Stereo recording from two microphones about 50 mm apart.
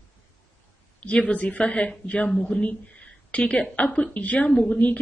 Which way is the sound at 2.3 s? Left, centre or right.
Centre.